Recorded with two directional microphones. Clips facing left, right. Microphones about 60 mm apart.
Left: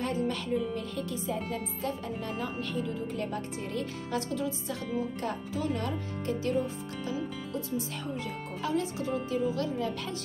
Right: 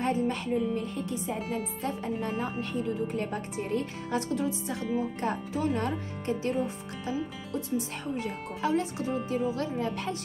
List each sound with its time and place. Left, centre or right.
0.0 s music: right
0.9 s speech: right